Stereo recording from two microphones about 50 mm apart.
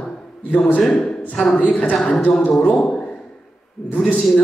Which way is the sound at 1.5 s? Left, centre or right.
Left.